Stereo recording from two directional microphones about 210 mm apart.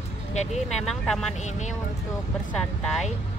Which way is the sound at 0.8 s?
Centre (ahead or behind).